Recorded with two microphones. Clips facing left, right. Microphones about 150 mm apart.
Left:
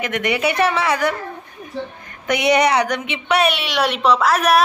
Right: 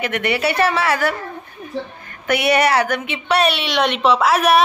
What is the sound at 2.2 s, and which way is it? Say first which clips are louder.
A woman's voice: even; 20° left (ahead or behind).